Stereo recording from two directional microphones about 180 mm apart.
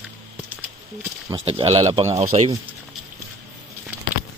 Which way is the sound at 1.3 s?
35° right (ahead or behind).